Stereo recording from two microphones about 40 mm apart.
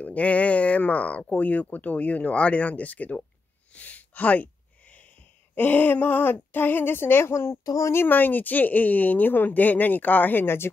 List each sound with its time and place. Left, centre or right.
0.0 s speech: left
3.7 s a sound: left
5.5 s speech: left
8.1 s speech: left
10.4 s speech: left